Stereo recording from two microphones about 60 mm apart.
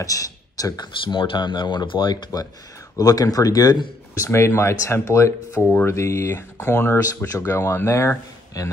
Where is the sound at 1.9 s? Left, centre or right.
Left.